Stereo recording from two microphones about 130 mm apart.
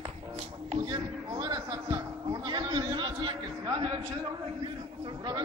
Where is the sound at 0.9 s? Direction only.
35° right (ahead or behind).